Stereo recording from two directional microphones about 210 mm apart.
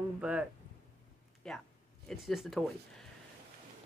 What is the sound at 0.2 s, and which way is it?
A woman's voice, 5° right (ahead or behind).